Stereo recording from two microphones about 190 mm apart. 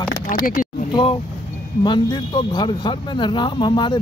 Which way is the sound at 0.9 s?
25° left (ahead or behind).